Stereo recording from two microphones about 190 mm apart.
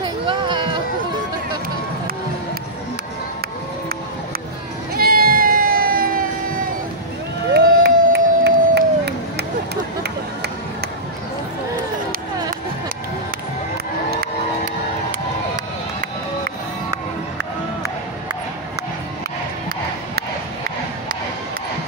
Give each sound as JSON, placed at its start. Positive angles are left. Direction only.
{"t": 0.0, "sound": "a sound", "side_deg": -25}
{"t": 4.9, "sound": "crowd", "side_deg": -50}
{"t": 7.5, "sound": "crowd", "side_deg": -60}
{"t": 14.1, "sound": "crowd", "side_deg": -45}